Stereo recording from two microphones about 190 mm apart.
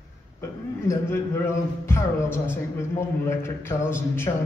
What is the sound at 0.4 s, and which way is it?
A man's voice, 15° left (ahead or behind).